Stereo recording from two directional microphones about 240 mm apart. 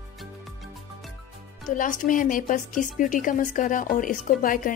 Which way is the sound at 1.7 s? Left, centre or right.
Left.